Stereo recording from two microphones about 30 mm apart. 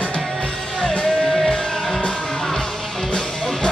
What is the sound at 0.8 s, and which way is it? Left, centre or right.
Music, left.